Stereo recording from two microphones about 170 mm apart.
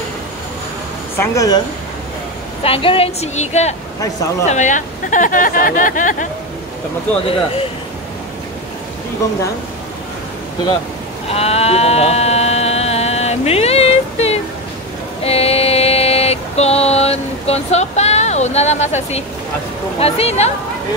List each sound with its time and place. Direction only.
1.1 s speech: 15° left (ahead or behind)
2.6 s a woman's voice: 35° left (ahead or behind); by 6.2 s 50° left (ahead or behind)
11.2 s sheep: 35° left (ahead or behind)
15.2 s a sound: 35° left (ahead or behind)
20.0 s a woman's voice: 35° left (ahead or behind)